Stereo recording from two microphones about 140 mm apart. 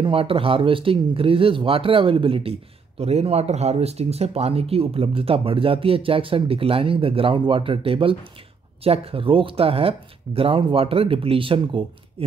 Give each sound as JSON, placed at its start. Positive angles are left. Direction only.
{"t": 0.0, "sound": "speech", "side_deg": -40}